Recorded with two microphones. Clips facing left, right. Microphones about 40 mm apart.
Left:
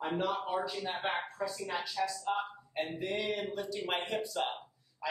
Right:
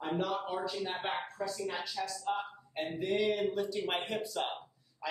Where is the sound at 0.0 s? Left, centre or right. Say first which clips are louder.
Left 1 dB; centre.